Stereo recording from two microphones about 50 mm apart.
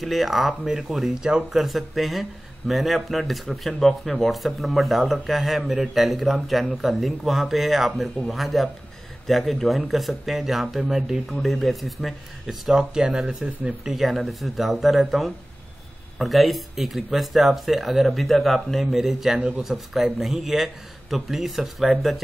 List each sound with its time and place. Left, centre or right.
0.0 s speech: centre
14.0 s speech: centre
19.3 s speech: right
19.6 s speech: centre